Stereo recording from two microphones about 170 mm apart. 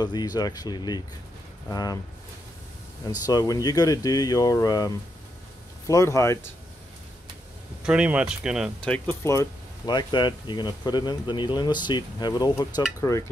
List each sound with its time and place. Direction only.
0.0 s speech: 25° left (ahead or behind)
3.3 s speech: 20° left (ahead or behind)
7.8 s speech: 5° right (ahead or behind)
8.8 s speech: 10° left (ahead or behind)